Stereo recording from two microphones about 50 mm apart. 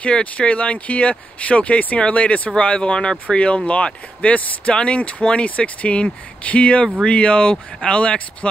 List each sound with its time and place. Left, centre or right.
0.0 s speech: left